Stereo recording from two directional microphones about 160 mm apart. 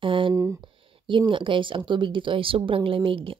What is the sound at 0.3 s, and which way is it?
Speech, 20° right (ahead or behind).